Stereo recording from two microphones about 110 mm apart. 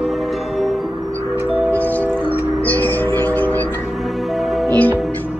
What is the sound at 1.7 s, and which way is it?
Music, 15° left (ahead or behind).